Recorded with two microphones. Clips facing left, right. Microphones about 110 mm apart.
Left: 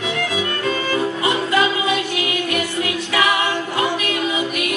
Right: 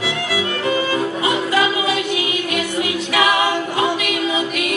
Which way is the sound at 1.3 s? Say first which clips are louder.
Even; 20° right (ahead or behind).